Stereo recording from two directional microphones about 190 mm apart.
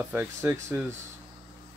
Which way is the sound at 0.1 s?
10° right (ahead or behind).